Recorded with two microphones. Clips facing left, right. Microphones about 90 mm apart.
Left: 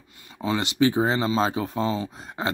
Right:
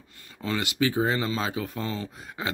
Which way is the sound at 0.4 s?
25° left (ahead or behind).